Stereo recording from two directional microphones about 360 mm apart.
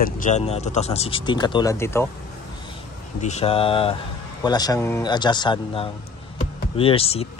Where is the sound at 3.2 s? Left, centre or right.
Centre.